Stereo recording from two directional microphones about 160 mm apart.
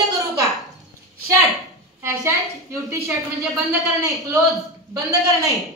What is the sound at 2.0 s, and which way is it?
A woman's voice, 15° right (ahead or behind).